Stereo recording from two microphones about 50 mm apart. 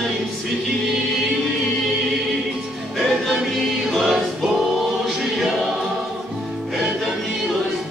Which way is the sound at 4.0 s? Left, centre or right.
Centre.